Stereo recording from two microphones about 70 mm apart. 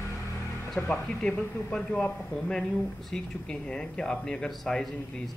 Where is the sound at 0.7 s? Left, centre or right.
Centre.